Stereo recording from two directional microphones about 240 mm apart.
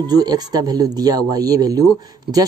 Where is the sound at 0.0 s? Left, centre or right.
Centre.